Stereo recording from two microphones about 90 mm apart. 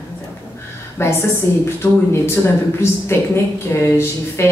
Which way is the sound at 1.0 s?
30° left (ahead or behind).